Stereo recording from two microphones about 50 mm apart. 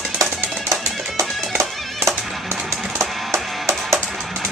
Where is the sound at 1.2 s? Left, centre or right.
Centre.